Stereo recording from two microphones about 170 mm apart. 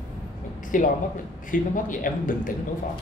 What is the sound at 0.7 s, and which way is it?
A man's voice, 50° left (ahead or behind).